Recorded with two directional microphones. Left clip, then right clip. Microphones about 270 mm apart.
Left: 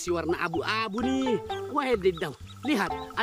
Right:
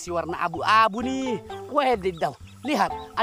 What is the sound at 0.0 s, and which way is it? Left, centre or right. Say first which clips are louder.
Speech: right 2 dB; centre.